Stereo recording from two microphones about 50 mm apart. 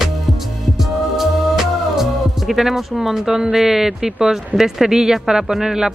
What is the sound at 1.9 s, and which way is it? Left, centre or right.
Music, centre.